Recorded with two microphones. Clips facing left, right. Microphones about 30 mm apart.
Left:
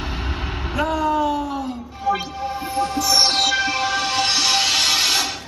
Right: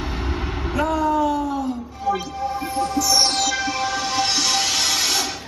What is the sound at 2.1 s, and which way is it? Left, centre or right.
Music, left.